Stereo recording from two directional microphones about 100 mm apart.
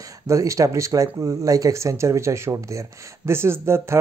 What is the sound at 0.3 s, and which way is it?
Speech, 30° right (ahead or behind).